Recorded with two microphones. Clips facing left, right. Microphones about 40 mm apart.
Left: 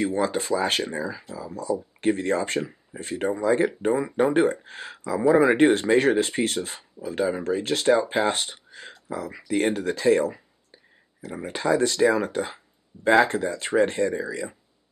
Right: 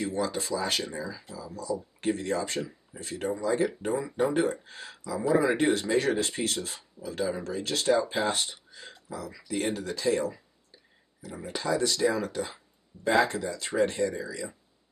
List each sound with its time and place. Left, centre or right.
0.0 s speech: left